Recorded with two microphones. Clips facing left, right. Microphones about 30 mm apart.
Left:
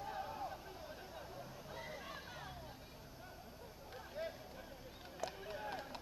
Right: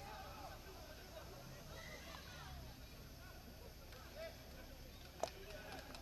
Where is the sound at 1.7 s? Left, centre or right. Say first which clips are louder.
Left 6 dB; centre.